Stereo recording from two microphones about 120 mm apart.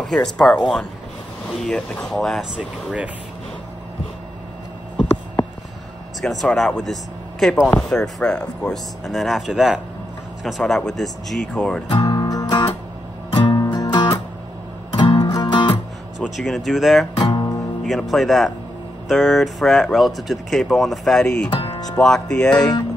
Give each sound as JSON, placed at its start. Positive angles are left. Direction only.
{"t": 0.0, "sound": "speech", "side_deg": 5}
{"t": 2.5, "sound": "speech", "side_deg": -10}
{"t": 6.2, "sound": "speech", "side_deg": 5}
{"t": 11.9, "sound": "music", "side_deg": 35}
{"t": 16.2, "sound": "speech", "side_deg": 0}
{"t": 17.2, "sound": "music", "side_deg": 35}
{"t": 18.1, "sound": "speech", "side_deg": 0}
{"t": 21.5, "sound": "music", "side_deg": 35}
{"t": 22.0, "sound": "speech", "side_deg": 5}